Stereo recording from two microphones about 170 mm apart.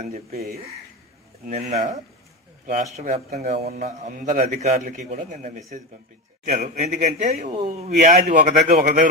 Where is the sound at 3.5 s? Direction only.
40° right (ahead or behind).